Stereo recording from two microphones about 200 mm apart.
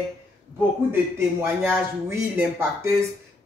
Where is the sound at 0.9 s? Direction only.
10° right (ahead or behind).